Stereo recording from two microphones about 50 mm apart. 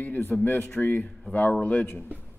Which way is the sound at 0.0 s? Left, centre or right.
Left.